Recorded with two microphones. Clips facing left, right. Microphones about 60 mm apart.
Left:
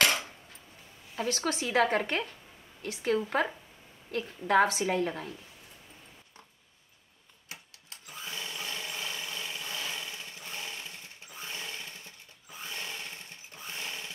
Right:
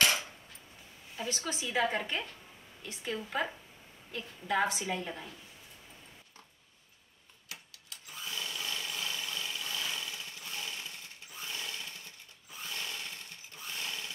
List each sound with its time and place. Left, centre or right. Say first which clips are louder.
1.1 s speech: left 6 dB; left
4.8 s speech: left 7 dB; left
7.9 s sewing machine: left 1 dB; left